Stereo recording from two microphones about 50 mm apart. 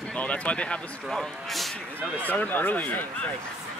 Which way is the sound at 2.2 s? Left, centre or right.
Left.